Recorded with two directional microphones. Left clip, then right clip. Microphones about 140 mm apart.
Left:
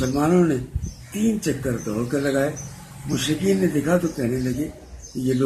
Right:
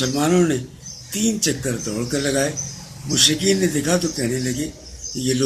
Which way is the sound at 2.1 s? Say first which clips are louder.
Right 1 dB; 10° right (ahead or behind).